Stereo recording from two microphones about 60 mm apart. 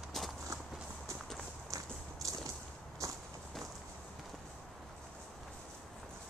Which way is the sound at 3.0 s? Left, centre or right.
Right.